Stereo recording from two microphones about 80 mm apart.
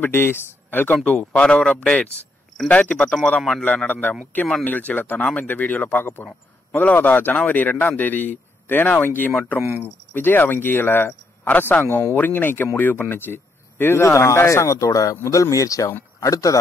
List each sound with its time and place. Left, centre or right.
0.0 s a man's voice: left
9.6 s speech: right
9.8 s speech: left